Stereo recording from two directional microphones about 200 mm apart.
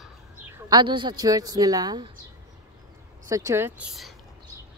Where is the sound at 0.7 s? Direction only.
25° right (ahead or behind).